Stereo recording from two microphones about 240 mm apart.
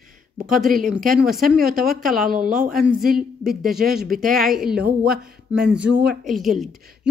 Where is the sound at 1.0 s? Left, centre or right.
Right.